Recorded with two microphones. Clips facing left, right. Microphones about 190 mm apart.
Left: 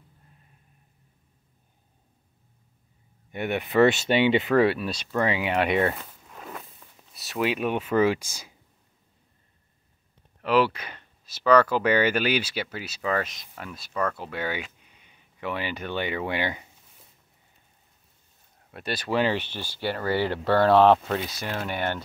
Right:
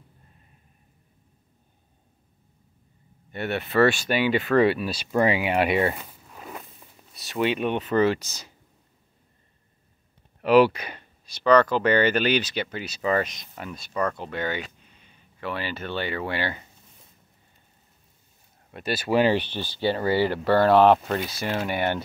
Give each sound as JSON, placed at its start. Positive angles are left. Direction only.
{"t": 3.3, "sound": "speech", "side_deg": 15}
{"t": 4.6, "sound": "speech", "side_deg": 0}
{"t": 6.8, "sound": "a sound", "side_deg": -15}
{"t": 7.2, "sound": "speech", "side_deg": 0}
{"t": 10.4, "sound": "speech", "side_deg": -15}
{"t": 11.2, "sound": "speech", "side_deg": 5}
{"t": 18.7, "sound": "speech", "side_deg": 0}